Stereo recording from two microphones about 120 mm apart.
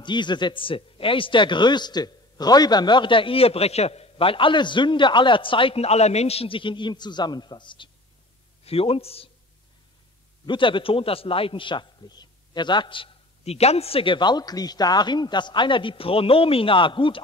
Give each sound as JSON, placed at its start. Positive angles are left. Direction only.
{"t": 0.0, "sound": "speech", "side_deg": 40}
{"t": 8.6, "sound": "a man's voice", "side_deg": 55}
{"t": 10.4, "sound": "a man's voice", "side_deg": 45}